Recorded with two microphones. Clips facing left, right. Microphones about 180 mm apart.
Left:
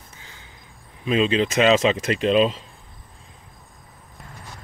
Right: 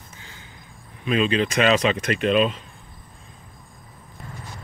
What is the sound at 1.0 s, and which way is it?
Speech, 25° left (ahead or behind).